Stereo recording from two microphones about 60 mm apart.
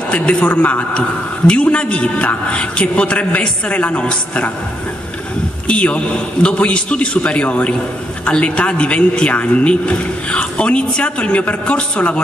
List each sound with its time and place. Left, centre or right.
0.1 s a man's voice: centre
5.7 s a man's voice: left